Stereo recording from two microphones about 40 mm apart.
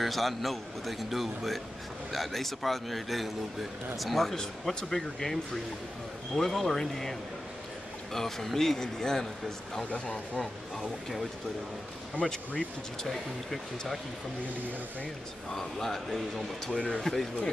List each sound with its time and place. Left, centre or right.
0.0 s a man's voice: centre
4.4 s speech: centre
9.8 s speech: left
10.4 s speech: centre
13.0 s a man's voice: centre
15.5 s a man's voice: centre
16.7 s speech: left
17.0 s speech: centre